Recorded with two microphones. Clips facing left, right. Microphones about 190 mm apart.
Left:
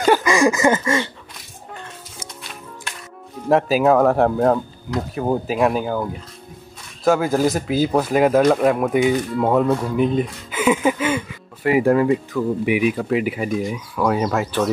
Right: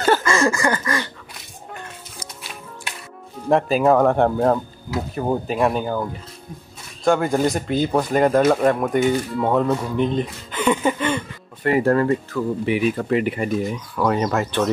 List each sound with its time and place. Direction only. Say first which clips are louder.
0.0 s a sound: left 2 dB; 15° left (ahead or behind)
3.4 s speech: left 1 dB; 5° left (ahead or behind)
7.1 s speech: left 1 dB; centre (ahead or behind)